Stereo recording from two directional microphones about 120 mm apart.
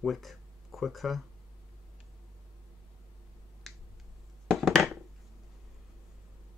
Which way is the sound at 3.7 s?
Centre (ahead or behind).